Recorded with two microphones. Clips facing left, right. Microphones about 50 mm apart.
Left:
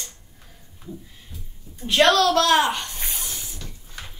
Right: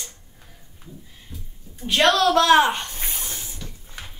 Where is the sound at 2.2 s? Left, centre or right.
Centre.